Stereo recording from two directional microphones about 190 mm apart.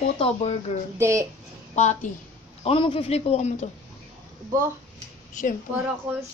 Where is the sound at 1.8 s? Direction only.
40° left (ahead or behind).